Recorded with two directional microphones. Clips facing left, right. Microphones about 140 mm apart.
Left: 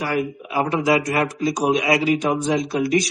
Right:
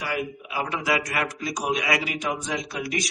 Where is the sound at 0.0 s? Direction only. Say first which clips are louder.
Left 6 dB; 40° left (ahead or behind).